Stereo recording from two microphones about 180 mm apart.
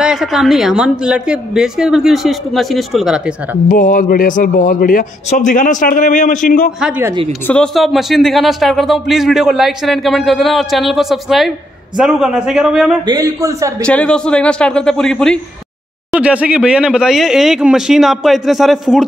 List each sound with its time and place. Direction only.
0.0 s speech: 5° right (ahead or behind)
3.6 s speech: 45° left (ahead or behind)
7.4 s speech: 5° left (ahead or behind)
13.0 s a man's voice: 20° right (ahead or behind)
13.8 s speech: 5° left (ahead or behind)